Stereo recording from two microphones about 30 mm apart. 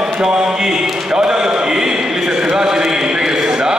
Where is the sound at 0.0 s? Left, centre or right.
Right.